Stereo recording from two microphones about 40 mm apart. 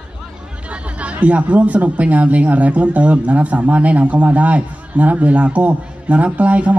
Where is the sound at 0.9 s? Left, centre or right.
Right.